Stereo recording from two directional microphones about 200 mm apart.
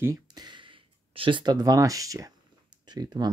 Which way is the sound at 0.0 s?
20° right (ahead or behind).